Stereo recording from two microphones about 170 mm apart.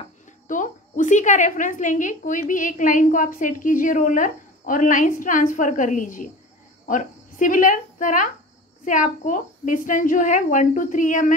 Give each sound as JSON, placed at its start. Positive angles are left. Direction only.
{"t": 0.5, "sound": "a woman's voice", "side_deg": 50}